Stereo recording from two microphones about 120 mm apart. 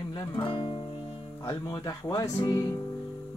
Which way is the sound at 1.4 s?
30° left (ahead or behind).